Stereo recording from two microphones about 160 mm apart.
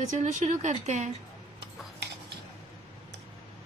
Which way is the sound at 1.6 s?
90° right.